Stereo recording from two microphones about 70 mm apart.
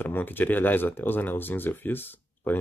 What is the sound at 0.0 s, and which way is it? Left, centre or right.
Speech, left.